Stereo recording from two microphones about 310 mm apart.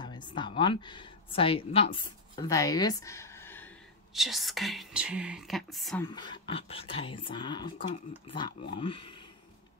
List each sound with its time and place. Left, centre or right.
0.0 s a woman's voice: centre
6.0 s speech: centre